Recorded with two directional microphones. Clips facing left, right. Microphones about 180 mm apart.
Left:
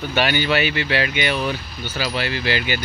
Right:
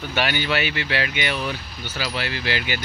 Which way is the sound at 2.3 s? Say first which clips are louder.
Left 4 dB; centre (ahead or behind).